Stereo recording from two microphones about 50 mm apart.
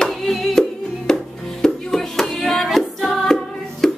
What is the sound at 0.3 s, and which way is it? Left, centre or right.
Music, centre.